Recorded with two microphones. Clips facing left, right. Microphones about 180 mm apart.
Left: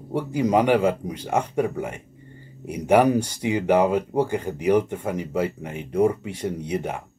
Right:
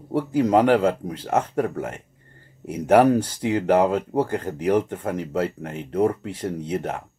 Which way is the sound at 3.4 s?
10° left (ahead or behind).